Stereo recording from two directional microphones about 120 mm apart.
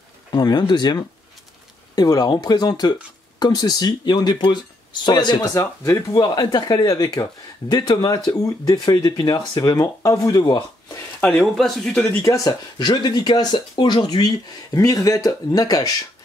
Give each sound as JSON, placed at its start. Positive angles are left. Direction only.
{"t": 0.3, "sound": "speech", "side_deg": 35}
{"t": 11.1, "sound": "speech", "side_deg": 10}
{"t": 12.0, "sound": "speech", "side_deg": 25}